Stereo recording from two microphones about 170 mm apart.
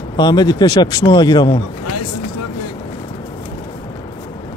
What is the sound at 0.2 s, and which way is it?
Speech, 25° left (ahead or behind).